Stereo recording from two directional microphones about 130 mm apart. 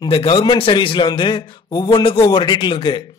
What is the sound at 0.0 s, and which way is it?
A man's voice, 45° left (ahead or behind).